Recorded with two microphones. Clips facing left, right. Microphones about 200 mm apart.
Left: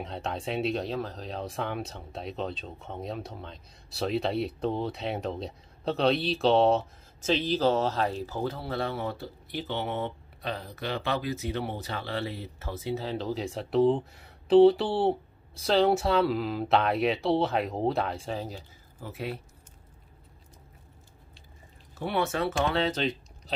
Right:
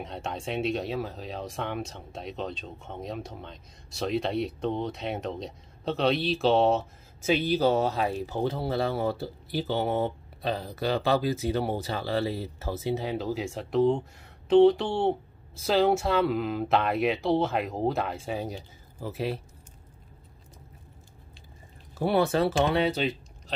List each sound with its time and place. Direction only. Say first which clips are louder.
0.0 s speech: left 1 dB; centre (ahead or behind)
8.4 s speech: right 5 dB; 25° right (ahead or behind)
13.0 s speech: right 1 dB; 10° right (ahead or behind)
18.2 s speech: right 2 dB; 10° right (ahead or behind)
18.9 s speech: right 4 dB; 30° right (ahead or behind)
22.0 s speech: right 5 dB; 35° right (ahead or behind)
22.8 s speech: right 2 dB; 10° right (ahead or behind)